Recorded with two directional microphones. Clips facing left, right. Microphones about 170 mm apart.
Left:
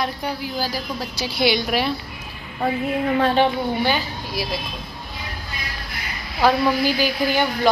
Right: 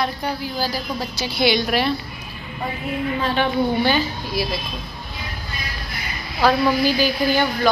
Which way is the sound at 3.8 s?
10° left (ahead or behind).